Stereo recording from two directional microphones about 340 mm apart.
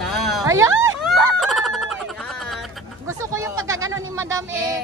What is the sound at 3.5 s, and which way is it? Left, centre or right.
Speech, right.